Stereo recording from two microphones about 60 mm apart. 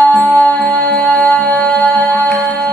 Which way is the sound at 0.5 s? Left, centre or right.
Left.